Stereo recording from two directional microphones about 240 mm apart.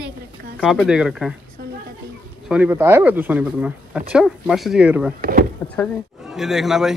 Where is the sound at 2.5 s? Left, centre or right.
Centre.